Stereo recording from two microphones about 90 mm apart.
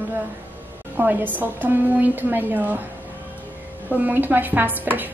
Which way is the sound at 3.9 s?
20° right (ahead or behind).